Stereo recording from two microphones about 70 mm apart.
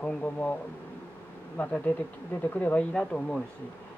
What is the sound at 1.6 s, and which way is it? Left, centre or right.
Speech, centre.